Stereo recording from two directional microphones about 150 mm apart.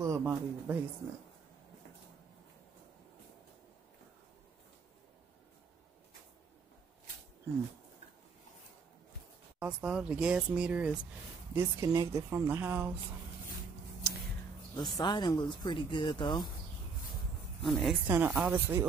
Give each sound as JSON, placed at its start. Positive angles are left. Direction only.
{"t": 0.0, "sound": "speech", "side_deg": -15}
{"t": 9.6, "sound": "speech", "side_deg": -5}
{"t": 11.5, "sound": "speech", "side_deg": -25}
{"t": 14.8, "sound": "speech", "side_deg": 30}
{"t": 17.6, "sound": "speech", "side_deg": 0}
{"t": 18.0, "sound": "speech", "side_deg": -15}